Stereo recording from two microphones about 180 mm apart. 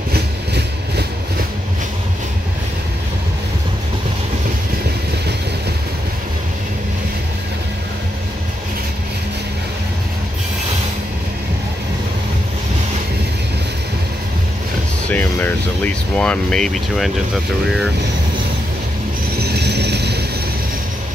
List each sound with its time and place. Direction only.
0.1 s train: 65° right (ahead or behind)
15.0 s air conditioning: 10° left (ahead or behind)
19.4 s vehicle: 65° right (ahead or behind)